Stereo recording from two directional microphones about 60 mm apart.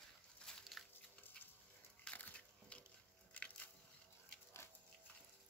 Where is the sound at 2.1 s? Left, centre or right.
Left.